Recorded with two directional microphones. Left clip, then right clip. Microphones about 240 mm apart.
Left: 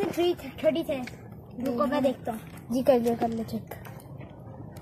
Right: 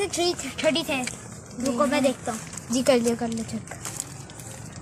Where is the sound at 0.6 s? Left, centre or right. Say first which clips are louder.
Right 3 dB; centre.